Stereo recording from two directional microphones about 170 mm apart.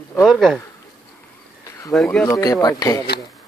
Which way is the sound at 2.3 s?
20° left (ahead or behind).